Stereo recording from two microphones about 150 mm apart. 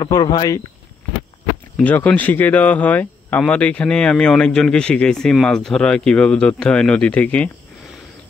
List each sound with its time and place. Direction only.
0.0 s speech: 25° left (ahead or behind)
1.8 s speech: 10° left (ahead or behind)